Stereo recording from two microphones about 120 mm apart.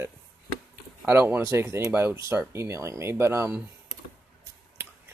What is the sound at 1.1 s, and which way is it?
Speech, 15° right (ahead or behind).